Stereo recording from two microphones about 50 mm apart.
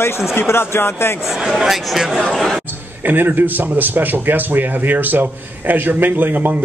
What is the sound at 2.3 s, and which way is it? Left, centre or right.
Speech, centre.